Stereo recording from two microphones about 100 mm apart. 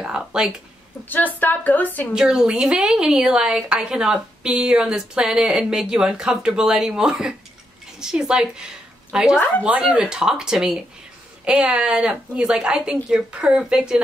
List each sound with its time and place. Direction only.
0.0 s a woman's voice: 5° right (ahead or behind)
1.0 s a woman's voice: 20° left (ahead or behind)
2.1 s a woman's voice: 5° right (ahead or behind)